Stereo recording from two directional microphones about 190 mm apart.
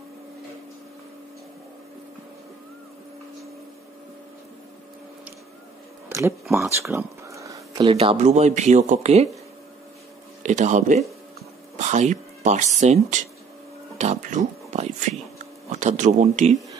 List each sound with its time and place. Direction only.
6.0 s a sound: 15° right (ahead or behind)
7.9 s speech: 30° right (ahead or behind)
10.4 s speech: 40° right (ahead or behind)
13.9 s music: 40° right (ahead or behind)
15.7 s speech: 40° right (ahead or behind)